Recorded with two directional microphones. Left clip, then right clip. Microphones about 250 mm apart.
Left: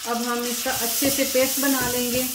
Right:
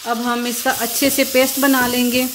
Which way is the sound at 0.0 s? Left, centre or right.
Right.